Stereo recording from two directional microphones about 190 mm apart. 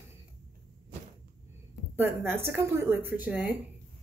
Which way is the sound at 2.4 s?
10° right (ahead or behind).